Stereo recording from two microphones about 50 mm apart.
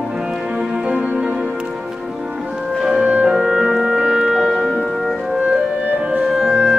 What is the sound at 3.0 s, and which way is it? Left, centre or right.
Music, right.